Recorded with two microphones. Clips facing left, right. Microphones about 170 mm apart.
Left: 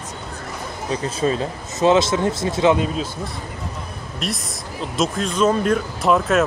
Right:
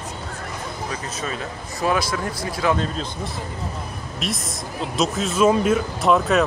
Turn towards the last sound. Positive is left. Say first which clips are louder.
# even
turn(degrees=0)  # may be behind; listen again after turning